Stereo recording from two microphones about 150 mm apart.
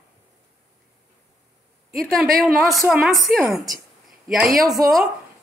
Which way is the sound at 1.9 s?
Centre (ahead or behind).